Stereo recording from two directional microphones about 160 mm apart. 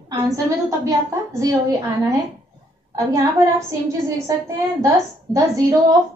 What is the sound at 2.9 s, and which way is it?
Speech, 20° right (ahead or behind).